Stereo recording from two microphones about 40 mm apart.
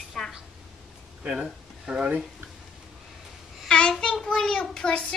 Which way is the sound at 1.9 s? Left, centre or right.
Right.